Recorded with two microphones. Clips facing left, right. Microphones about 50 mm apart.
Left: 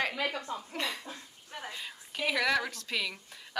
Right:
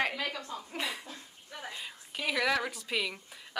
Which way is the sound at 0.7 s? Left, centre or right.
Centre.